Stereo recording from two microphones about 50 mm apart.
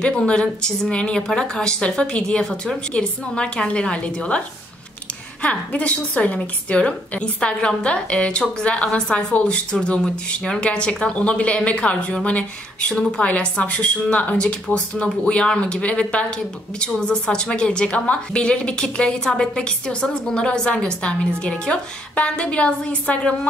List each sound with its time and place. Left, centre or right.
0.2 s a woman's voice: centre
5.4 s a woman's voice: left